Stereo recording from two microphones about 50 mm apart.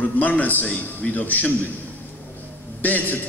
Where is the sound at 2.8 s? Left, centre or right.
Left.